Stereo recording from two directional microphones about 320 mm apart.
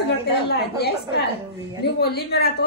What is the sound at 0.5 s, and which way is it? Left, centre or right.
A woman's voice, left.